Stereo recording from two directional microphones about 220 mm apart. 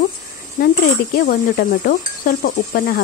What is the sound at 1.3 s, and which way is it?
Speech, 45° left (ahead or behind).